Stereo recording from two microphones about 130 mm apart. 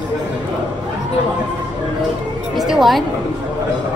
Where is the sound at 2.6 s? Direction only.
Centre (ahead or behind).